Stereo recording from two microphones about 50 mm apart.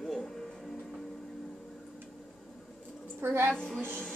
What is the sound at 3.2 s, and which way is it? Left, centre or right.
Speech, right.